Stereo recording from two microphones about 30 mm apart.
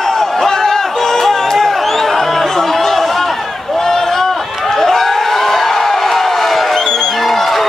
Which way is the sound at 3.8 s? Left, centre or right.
Centre.